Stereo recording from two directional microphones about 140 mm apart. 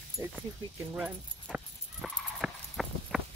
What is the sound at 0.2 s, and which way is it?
Speech, 15° right (ahead or behind).